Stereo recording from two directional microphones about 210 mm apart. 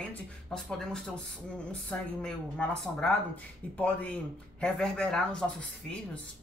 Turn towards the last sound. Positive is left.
turn(degrees=5)  # may be behind; listen again after turning